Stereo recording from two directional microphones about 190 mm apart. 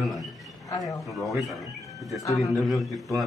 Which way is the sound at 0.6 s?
20° left (ahead or behind).